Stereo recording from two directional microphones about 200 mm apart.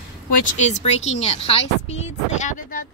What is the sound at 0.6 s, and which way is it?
Speech, 35° left (ahead or behind).